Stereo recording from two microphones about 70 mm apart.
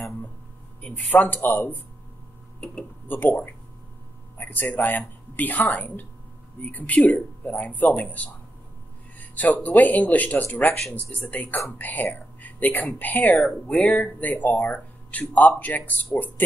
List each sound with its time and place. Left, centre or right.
0.8 s speech: left
3.1 s speech: left
9.3 s speech: left